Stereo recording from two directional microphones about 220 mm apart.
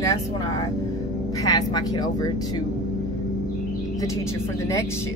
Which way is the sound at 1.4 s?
20° left (ahead or behind).